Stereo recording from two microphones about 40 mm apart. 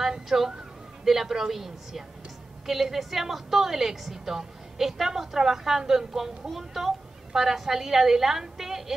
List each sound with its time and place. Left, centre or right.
0.3 s a woman's voice: centre